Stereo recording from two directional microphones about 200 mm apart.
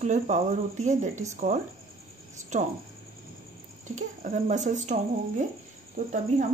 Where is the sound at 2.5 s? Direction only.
35° right (ahead or behind).